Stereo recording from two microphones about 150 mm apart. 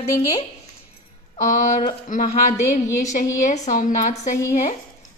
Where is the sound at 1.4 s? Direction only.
55° left (ahead or behind).